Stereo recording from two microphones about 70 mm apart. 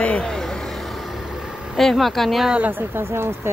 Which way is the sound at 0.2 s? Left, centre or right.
Centre.